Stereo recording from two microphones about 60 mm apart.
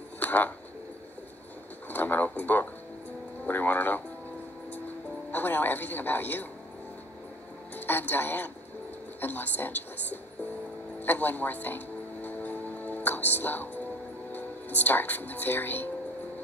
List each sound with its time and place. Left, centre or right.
0.2 s a sound: left
1.9 s speech: left
5.3 s a woman's voice: left
7.7 s a woman's voice: left
11.0 s music: left
14.3 s speech: left